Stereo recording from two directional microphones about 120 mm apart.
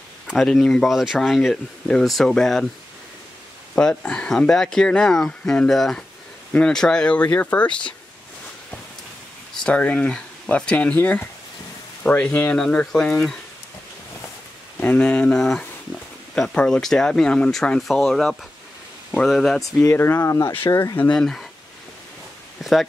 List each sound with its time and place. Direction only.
0.3 s speech: centre (ahead or behind)
3.7 s speech: 10° left (ahead or behind)
9.6 s speech: 10° left (ahead or behind)
14.8 s speech: 10° left (ahead or behind)
19.6 s speech: 20° left (ahead or behind); by 21.5 s 5° left (ahead or behind)
22.6 s speech: centre (ahead or behind)